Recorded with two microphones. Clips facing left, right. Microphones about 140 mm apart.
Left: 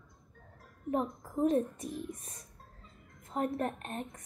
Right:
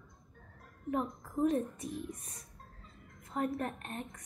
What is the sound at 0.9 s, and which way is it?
A woman's voice, 35° left (ahead or behind).